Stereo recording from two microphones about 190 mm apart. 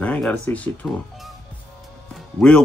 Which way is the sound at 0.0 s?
5° left (ahead or behind).